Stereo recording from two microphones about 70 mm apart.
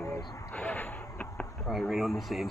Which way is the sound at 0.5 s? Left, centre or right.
Left.